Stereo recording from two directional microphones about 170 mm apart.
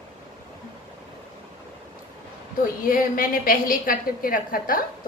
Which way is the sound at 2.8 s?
55° left (ahead or behind).